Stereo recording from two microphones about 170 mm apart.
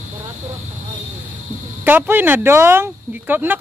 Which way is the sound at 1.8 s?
10° right (ahead or behind).